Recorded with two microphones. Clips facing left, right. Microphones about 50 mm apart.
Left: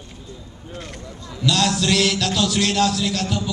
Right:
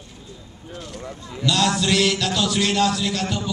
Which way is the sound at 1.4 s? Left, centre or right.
Centre.